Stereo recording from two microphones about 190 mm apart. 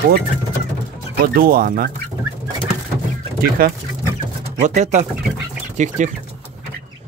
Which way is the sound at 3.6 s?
50° right (ahead or behind).